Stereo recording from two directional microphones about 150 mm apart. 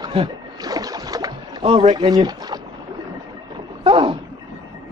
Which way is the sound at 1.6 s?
40° right (ahead or behind).